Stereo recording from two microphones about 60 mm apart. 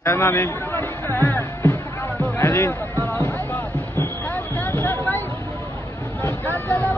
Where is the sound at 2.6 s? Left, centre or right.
Left.